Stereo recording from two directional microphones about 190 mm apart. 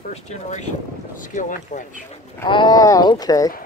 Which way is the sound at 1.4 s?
45° left (ahead or behind).